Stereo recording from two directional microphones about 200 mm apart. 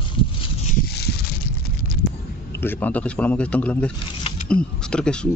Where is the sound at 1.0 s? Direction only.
50° left (ahead or behind).